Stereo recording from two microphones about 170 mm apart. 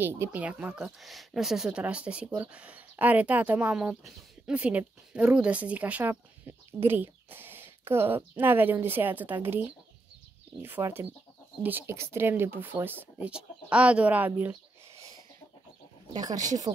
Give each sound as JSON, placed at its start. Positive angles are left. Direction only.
{"t": 0.0, "sound": "speech", "side_deg": -15}
{"t": 16.1, "sound": "speech", "side_deg": -20}
{"t": 16.7, "sound": "speech", "side_deg": -35}